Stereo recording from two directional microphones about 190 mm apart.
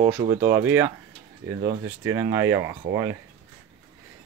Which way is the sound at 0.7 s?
10° right (ahead or behind).